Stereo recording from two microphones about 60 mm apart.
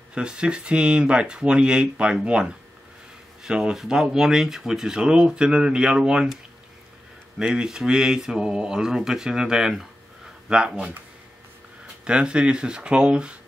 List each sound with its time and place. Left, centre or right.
0.1 s speech: centre
3.4 s speech: centre
7.3 s speech: centre
12.0 s speech: centre